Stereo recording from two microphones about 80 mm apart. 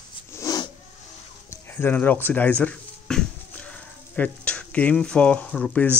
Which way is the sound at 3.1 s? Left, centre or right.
Centre.